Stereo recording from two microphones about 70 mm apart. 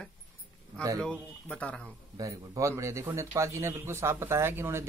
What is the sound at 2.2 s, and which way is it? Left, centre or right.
Speech, right.